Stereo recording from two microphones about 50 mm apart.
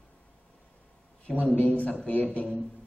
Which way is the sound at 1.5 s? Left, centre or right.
Left.